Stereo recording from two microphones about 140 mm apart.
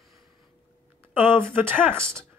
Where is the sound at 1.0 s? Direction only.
15° right (ahead or behind).